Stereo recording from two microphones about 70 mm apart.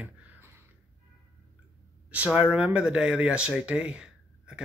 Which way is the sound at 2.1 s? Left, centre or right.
Centre.